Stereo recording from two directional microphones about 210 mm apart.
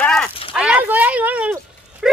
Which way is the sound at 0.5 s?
5° right (ahead or behind).